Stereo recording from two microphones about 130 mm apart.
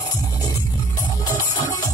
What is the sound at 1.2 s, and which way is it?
Music, 25° left (ahead or behind).